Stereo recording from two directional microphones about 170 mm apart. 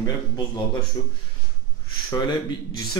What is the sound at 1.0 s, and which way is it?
Speech, 25° left (ahead or behind).